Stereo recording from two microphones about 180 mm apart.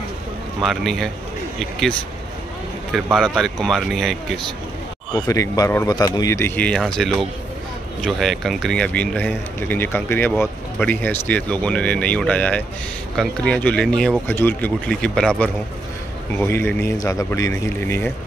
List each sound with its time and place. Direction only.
0.6 s speech: centre (ahead or behind)
5.2 s speech: 20° left (ahead or behind)